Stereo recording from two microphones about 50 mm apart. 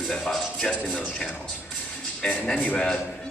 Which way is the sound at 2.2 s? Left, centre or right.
Centre.